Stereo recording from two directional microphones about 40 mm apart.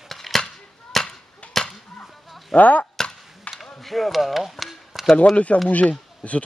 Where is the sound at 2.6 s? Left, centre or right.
Left.